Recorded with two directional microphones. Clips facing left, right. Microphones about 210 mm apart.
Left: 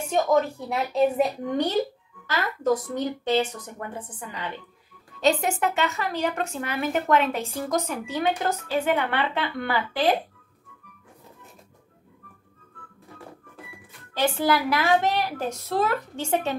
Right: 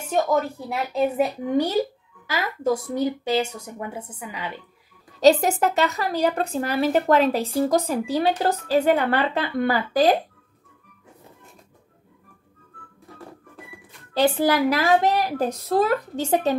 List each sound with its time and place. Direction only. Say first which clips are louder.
0.1 s a woman's voice: even; centre (ahead or behind)
5.2 s a woman's voice: right 6 dB; 40° right (ahead or behind)
14.1 s a woman's voice: right 3 dB; 35° right (ahead or behind)